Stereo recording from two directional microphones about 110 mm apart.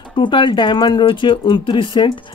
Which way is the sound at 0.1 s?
50° left (ahead or behind).